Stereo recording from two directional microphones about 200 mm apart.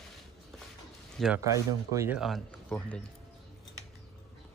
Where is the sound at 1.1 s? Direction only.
Centre (ahead or behind).